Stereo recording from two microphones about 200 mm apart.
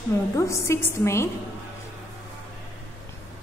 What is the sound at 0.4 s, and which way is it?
Speech, 15° left (ahead or behind).